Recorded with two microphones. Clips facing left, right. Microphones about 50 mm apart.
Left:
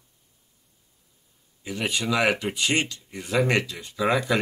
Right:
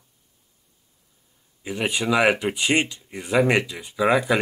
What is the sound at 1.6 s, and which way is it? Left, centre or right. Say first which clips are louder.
Speech: right 3 dB; centre.